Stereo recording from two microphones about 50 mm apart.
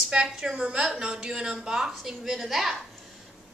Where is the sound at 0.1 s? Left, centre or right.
Centre.